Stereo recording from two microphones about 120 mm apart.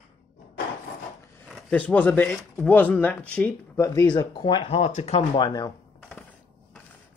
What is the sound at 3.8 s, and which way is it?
Speech, 30° left (ahead or behind).